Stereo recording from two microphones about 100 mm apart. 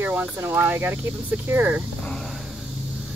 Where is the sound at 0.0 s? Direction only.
20° right (ahead or behind).